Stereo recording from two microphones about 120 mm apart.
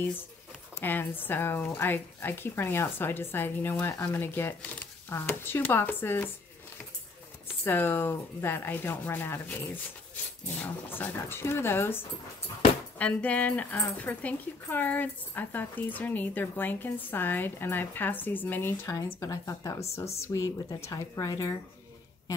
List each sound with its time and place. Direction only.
0.7 s speech: 15° left (ahead or behind)
7.6 s speech: 20° left (ahead or behind)
13.0 s speech: 10° left (ahead or behind)